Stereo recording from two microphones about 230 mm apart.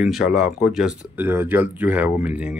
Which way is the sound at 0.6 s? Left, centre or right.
Centre.